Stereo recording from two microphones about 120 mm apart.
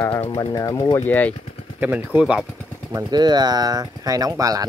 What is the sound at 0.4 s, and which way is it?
Speech, 35° left (ahead or behind).